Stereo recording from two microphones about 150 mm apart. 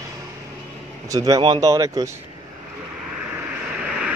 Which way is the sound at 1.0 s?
25° right (ahead or behind).